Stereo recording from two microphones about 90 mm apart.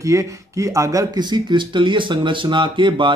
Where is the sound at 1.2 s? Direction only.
55° right (ahead or behind).